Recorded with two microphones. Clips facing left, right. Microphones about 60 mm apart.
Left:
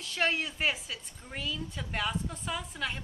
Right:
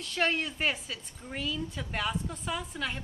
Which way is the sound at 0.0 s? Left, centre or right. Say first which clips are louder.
Right 1 dB; centre.